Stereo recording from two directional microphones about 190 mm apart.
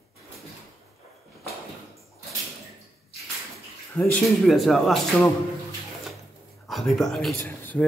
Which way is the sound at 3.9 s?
5° left (ahead or behind).